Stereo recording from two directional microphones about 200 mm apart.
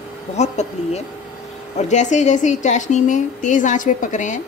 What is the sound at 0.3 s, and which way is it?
A woman's voice, 35° left (ahead or behind).